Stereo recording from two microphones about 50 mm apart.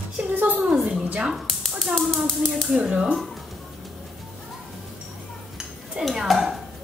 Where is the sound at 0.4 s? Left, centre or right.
Right.